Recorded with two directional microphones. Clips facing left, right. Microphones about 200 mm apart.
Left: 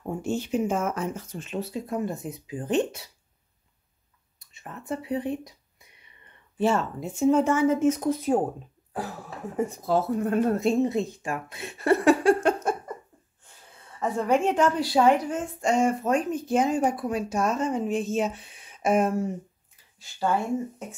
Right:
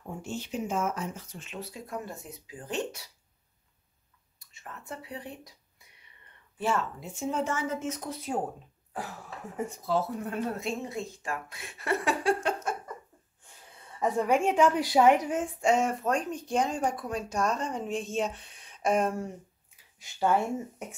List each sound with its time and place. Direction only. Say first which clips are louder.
0.0 s speech: left 8 dB; 50° left (ahead or behind)
1.5 s speech: left 8 dB; 25° left (ahead or behind)
4.4 s speech: left 5 dB; 20° left (ahead or behind)
6.6 s speech: left 6 dB; 25° left (ahead or behind)
7.0 s speech: left 10 dB; 50° left (ahead or behind)
9.8 s speech: left 5 dB; 50° left (ahead or behind)
10.8 s speech: left 11 dB; 20° left (ahead or behind)
11.8 s speech: left 9 dB; 40° left (ahead or behind)
13.9 s a woman's voice: left 2 dB; 15° right (ahead or behind)
15.7 s speech: left 4 dB; centre (ahead or behind)